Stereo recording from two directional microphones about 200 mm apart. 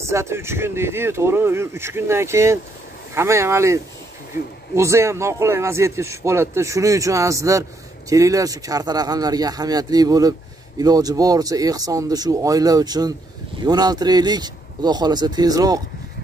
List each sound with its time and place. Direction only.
0.0 s a man's voice: 15° right (ahead or behind)